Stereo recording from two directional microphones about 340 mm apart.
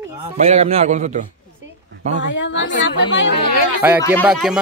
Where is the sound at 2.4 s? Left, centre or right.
Left.